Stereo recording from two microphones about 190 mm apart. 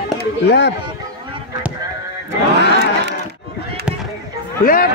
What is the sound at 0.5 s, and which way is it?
Speech, 60° left (ahead or behind).